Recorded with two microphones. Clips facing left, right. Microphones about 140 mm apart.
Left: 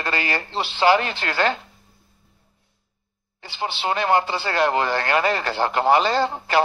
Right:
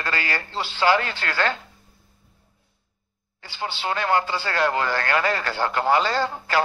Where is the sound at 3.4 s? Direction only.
20° left (ahead or behind).